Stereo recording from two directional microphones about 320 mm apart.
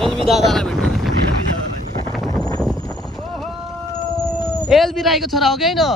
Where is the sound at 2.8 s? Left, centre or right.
Centre.